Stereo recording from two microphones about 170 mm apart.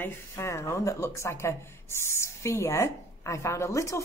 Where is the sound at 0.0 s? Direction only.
15° left (ahead or behind).